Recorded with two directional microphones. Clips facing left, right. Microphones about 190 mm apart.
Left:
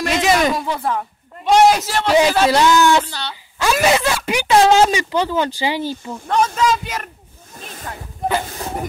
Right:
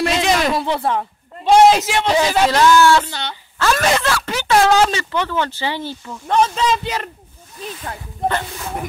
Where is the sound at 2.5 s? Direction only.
20° left (ahead or behind).